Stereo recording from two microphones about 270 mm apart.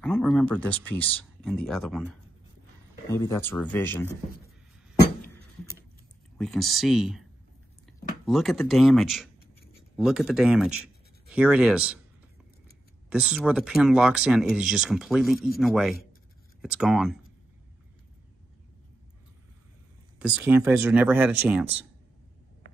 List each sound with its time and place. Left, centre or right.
0.0 s speech: centre
6.3 s speech: centre
8.3 s speech: centre
13.1 s speech: centre
20.2 s speech: centre